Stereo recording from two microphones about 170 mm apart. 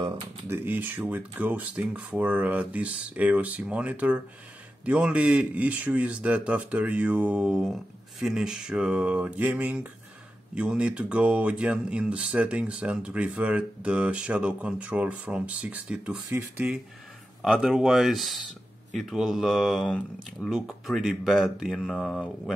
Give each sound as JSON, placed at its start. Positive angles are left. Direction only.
{"t": 0.5, "sound": "speech", "side_deg": -10}